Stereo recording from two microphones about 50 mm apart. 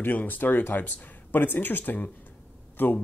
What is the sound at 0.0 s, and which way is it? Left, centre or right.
Speech, left.